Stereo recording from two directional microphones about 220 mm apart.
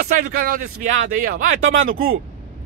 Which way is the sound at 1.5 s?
65° right (ahead or behind).